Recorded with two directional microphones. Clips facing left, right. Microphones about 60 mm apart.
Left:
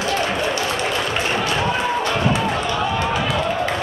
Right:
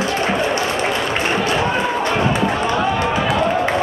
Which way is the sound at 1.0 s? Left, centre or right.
Right.